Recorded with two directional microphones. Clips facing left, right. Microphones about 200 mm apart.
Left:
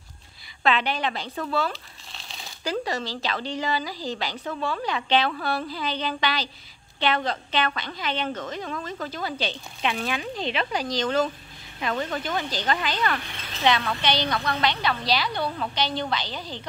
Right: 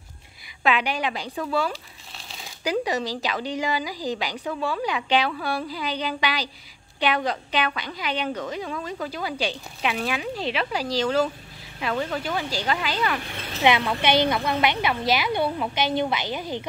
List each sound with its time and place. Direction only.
0.7 s speech: 10° right (ahead or behind)